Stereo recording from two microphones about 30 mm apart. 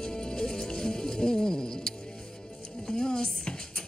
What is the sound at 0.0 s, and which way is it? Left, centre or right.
Music, left.